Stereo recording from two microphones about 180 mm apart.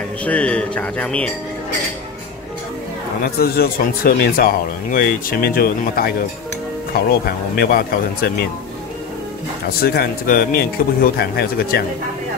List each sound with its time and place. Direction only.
0.2 s speech: 5° left (ahead or behind)
3.3 s speech: 55° left (ahead or behind)
9.8 s speech: 55° left (ahead or behind)